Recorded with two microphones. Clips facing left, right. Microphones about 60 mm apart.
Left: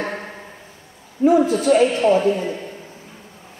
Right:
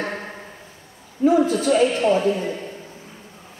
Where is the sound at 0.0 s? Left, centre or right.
Left.